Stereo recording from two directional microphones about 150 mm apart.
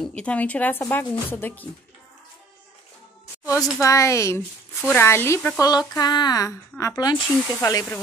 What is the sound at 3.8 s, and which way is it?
Speech, 20° left (ahead or behind).